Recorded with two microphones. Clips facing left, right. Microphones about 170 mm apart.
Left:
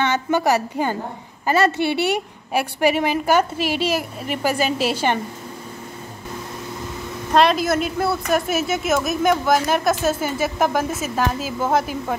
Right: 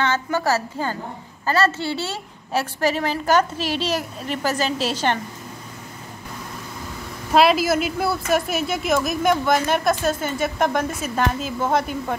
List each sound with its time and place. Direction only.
0.0 s a woman's voice: 15° left (ahead or behind)
7.3 s a woman's voice: 5° right (ahead or behind)